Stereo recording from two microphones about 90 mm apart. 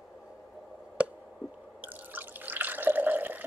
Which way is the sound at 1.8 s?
20° right (ahead or behind).